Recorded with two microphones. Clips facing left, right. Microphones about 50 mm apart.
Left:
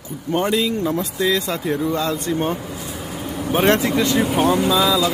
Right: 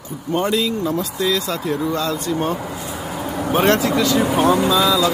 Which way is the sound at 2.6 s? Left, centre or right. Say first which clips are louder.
Right 3 dB; right.